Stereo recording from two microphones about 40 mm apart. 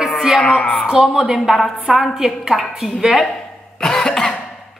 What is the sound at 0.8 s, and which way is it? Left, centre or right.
Speech, centre.